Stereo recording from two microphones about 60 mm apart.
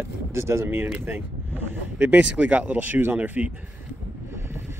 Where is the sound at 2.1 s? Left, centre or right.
Right.